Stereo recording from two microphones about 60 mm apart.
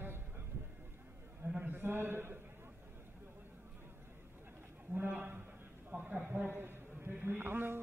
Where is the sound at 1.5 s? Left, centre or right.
Right.